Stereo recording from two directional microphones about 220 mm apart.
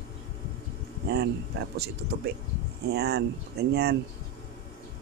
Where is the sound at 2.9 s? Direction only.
45° right (ahead or behind).